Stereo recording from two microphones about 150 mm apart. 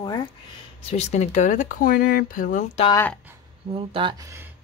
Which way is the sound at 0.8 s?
45° left (ahead or behind).